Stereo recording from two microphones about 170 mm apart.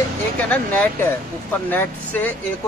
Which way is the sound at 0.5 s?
10° left (ahead or behind).